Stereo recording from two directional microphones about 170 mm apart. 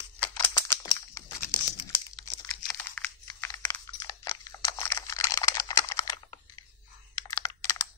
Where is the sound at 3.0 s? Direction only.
5° left (ahead or behind).